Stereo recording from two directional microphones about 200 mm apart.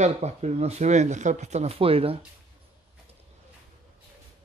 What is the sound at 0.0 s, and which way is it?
Speech, 35° right (ahead or behind).